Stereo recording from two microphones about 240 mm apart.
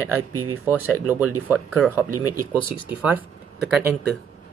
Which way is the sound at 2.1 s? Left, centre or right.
Right.